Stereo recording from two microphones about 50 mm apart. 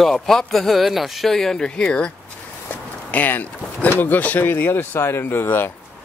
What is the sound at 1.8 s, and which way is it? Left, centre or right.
Speech, left.